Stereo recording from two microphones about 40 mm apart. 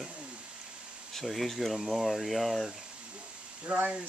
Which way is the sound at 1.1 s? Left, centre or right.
Centre.